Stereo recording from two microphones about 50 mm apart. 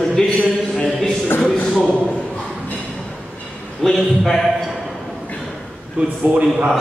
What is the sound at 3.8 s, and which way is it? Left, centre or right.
Speech, centre.